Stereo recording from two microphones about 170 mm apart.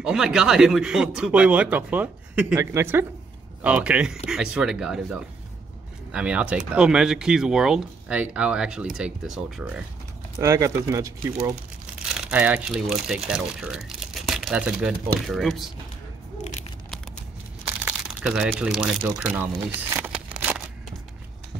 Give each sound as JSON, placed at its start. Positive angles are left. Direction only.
{"t": 0.0, "sound": "speech", "side_deg": -5}
{"t": 10.3, "sound": "speech", "side_deg": -15}
{"t": 11.8, "sound": "speech", "side_deg": -5}
{"t": 17.6, "sound": "crumpling", "side_deg": -5}